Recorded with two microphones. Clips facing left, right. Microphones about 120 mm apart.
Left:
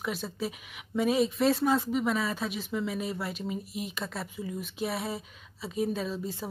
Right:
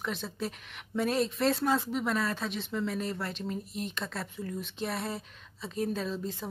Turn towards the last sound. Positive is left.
turn(degrees=5)  # may be behind; listen again after turning